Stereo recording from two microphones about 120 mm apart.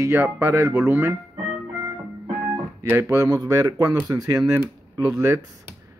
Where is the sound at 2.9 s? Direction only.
25° right (ahead or behind).